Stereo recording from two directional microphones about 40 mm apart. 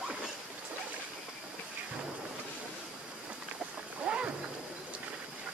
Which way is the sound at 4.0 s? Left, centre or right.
Right.